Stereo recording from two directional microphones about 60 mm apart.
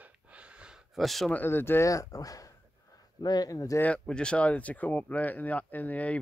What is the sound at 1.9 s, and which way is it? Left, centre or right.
Speech, left.